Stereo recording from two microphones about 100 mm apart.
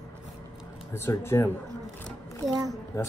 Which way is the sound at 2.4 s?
35° right (ahead or behind).